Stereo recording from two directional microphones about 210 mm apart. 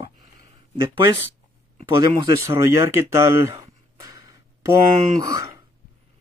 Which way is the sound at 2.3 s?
15° right (ahead or behind).